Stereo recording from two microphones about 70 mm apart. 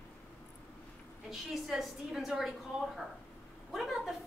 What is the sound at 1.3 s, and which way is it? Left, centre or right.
A woman's voice, centre.